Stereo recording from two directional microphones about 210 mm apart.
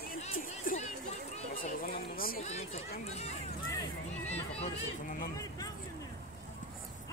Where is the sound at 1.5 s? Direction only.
45° left (ahead or behind).